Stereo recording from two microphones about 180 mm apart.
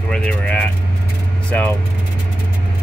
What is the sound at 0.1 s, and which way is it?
Speech, 5° left (ahead or behind).